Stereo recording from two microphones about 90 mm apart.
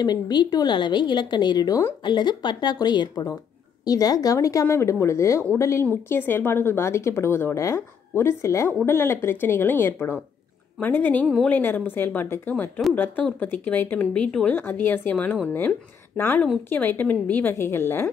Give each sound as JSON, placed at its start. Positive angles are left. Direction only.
{"t": 0.0, "sound": "a woman's voice", "side_deg": 50}
{"t": 16.1, "sound": "speech", "side_deg": 10}
{"t": 16.6, "sound": "a woman's voice", "side_deg": 25}